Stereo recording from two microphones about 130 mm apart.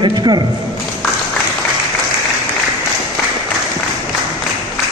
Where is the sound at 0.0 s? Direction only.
35° right (ahead or behind).